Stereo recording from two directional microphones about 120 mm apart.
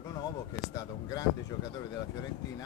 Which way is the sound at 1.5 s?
35° left (ahead or behind).